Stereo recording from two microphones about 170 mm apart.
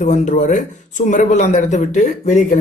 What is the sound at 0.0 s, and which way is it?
Speech, 45° left (ahead or behind).